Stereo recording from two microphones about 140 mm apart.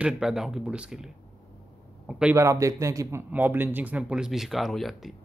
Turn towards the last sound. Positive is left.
turn(degrees=0)  # may be behind; listen again after turning